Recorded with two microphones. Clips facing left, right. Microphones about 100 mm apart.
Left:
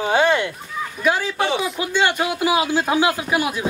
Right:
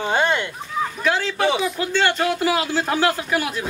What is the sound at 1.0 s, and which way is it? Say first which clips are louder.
Speech: left 1 dB; 15° left (ahead or behind).